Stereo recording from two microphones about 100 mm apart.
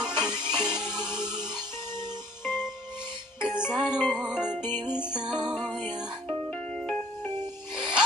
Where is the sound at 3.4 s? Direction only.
10° right (ahead or behind).